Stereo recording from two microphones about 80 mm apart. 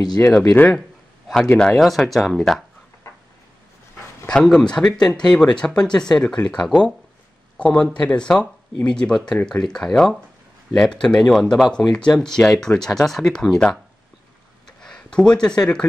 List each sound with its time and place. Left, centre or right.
0.2 s speech: left
1.3 s speech: centre
4.3 s speech: centre
14.8 s speech: centre